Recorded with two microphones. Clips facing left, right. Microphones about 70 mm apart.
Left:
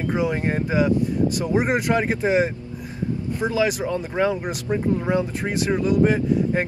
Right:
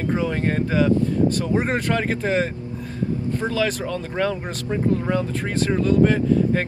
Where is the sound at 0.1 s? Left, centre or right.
Centre.